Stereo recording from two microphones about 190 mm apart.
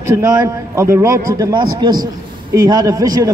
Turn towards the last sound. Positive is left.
turn(degrees=-20)  # may be behind; listen again after turning